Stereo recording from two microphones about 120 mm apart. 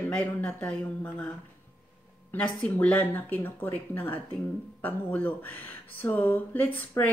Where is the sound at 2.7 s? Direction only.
15° left (ahead or behind).